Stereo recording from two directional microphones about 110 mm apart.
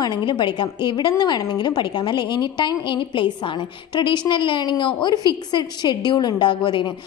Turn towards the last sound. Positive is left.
turn(degrees=45)  # may be behind; listen again after turning